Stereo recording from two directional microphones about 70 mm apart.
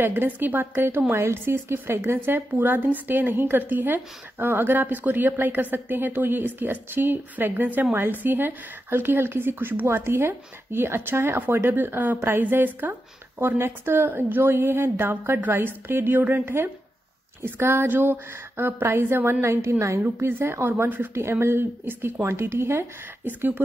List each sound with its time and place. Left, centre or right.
0.0 s a woman's voice: right
2.5 s a woman's voice: right
23.2 s a woman's voice: right